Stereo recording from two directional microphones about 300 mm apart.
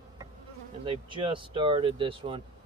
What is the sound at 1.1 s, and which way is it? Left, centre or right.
Speech, centre.